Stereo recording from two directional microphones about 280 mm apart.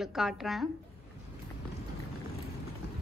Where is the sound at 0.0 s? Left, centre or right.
Centre.